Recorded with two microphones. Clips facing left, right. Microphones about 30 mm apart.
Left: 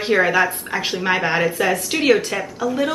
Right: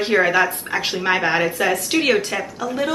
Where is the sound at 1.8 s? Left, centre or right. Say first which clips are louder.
Left 3 dB; right.